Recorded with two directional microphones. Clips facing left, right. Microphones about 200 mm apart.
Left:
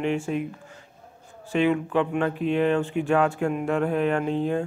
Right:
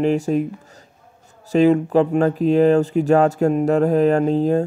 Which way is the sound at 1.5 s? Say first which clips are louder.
Right 8 dB; 40° right (ahead or behind).